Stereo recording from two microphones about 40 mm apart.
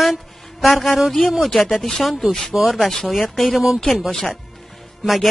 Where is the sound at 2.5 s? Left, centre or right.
Centre.